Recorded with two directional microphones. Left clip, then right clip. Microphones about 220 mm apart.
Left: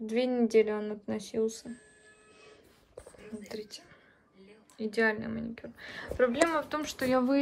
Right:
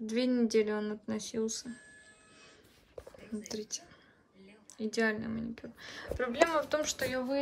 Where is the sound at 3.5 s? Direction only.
15° right (ahead or behind).